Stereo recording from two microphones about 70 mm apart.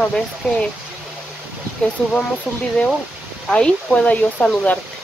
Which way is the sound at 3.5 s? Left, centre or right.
Centre.